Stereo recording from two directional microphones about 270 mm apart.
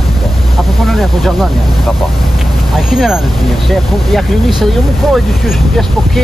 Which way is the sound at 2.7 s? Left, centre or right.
Centre.